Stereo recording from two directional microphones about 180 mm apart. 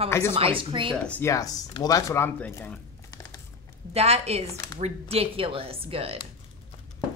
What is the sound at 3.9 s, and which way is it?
A woman's voice, 35° right (ahead or behind).